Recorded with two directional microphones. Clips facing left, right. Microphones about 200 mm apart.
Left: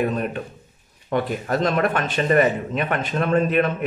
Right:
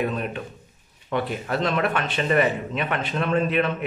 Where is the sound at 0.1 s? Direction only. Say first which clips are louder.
Left 3 dB; 45° left (ahead or behind).